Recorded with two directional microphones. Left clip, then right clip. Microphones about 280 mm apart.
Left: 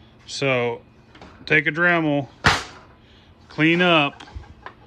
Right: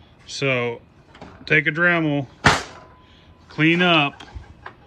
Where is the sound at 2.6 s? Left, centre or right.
Centre.